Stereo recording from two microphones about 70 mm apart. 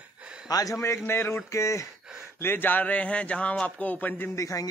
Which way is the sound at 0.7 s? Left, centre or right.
Left.